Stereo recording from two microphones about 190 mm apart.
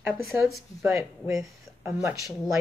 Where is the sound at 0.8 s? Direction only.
15° right (ahead or behind).